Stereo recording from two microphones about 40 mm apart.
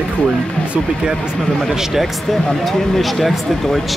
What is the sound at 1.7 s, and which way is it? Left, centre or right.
Speech, centre.